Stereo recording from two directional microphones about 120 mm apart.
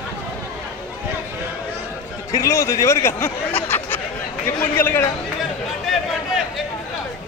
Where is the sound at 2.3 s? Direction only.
25° left (ahead or behind).